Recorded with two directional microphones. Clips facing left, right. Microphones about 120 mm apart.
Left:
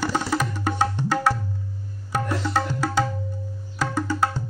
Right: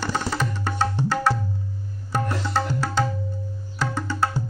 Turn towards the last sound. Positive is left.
turn(degrees=5)  # may be behind; listen again after turning